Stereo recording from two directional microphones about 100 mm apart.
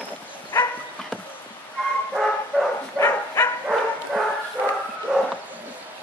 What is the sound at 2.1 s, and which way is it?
Bow-wow, 5° right (ahead or behind).